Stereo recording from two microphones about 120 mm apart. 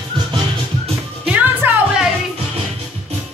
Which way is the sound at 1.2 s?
15° right (ahead or behind).